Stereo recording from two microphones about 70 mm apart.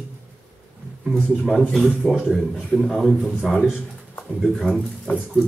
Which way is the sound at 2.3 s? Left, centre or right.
Centre.